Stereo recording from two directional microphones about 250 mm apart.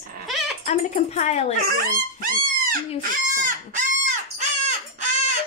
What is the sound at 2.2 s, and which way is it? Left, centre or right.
Dog, right.